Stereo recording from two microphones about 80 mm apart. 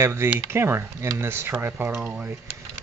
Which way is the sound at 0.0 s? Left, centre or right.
Right.